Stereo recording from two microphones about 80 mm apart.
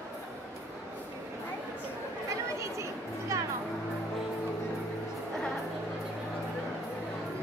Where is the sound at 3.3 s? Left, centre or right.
Right.